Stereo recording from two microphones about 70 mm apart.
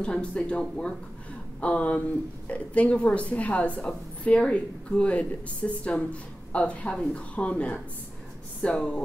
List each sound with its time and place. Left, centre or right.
0.0 s a woman's voice: centre